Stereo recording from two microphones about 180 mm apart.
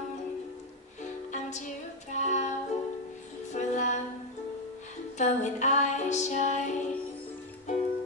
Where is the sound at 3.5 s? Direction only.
40° left (ahead or behind).